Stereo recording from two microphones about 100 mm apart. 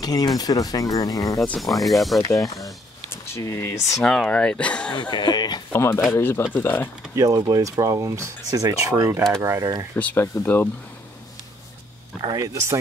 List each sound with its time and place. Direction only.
0.0 s speech: 40° left (ahead or behind)
1.6 s speech: centre (ahead or behind)
2.6 s speech: 25° left (ahead or behind)
4.0 s speech: 10° left (ahead or behind)
4.9 s speech: 45° left (ahead or behind)
5.7 s speech: 25° left (ahead or behind)
7.2 s speech: 35° right (ahead or behind)
9.9 s speech: 15° left (ahead or behind)
12.4 s speech: 30° right (ahead or behind)